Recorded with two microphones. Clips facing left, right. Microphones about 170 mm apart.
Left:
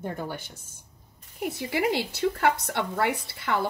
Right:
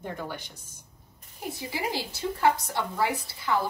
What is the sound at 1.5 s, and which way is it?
Speech, 65° left (ahead or behind).